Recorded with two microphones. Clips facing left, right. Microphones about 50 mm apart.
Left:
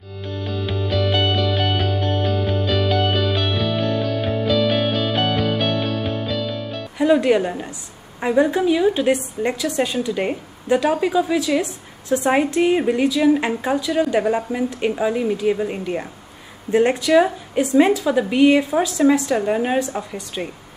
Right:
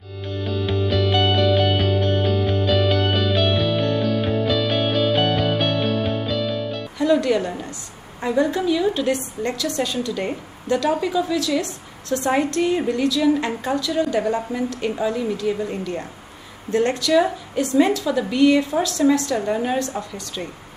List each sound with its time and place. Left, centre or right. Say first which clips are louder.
0.5 s music: right 2 dB; centre
7.0 s a woman's voice: left 3 dB; centre